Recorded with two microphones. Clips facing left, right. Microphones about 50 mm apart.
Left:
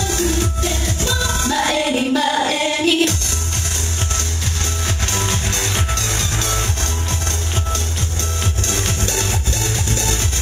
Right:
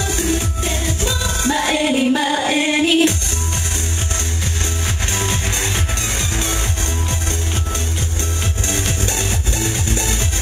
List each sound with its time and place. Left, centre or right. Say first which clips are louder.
1.0 s music: even; centre
5.1 s music: right 1 dB; centre
8.6 s music: right 2 dB; centre